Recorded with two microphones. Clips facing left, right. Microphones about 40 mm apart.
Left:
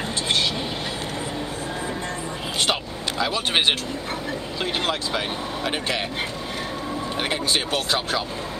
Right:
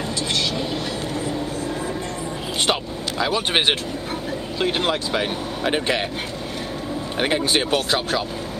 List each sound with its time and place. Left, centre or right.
2.6 s vehicle: centre
4.6 s speech: centre
7.2 s speech: centre
7.4 s speech: right